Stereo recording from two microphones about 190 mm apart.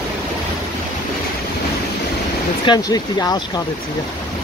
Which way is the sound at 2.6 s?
20° left (ahead or behind).